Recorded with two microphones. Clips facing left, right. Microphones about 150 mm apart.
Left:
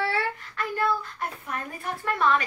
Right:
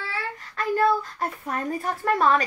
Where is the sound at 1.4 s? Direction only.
35° right (ahead or behind).